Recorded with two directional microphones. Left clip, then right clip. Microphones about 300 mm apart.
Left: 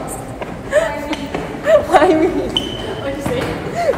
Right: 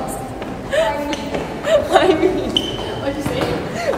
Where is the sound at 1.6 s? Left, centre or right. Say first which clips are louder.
Left 3 dB; left.